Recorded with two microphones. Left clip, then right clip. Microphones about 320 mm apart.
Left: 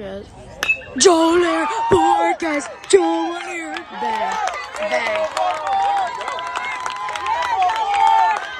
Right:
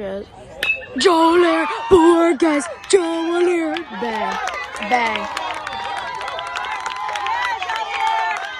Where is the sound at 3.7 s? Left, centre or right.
Right.